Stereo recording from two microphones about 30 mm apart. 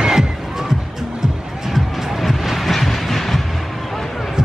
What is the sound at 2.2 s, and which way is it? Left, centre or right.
Vehicle, centre.